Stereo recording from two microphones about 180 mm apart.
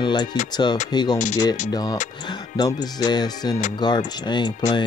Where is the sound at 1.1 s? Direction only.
40° left (ahead or behind).